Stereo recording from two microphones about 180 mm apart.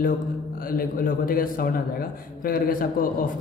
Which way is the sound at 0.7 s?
50° left (ahead or behind).